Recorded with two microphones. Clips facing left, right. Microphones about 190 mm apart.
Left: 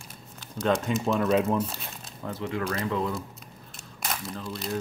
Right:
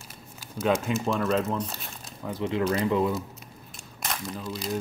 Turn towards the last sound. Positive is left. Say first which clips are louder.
# right 1 dB
turn(degrees=0)  # may be behind; listen again after turning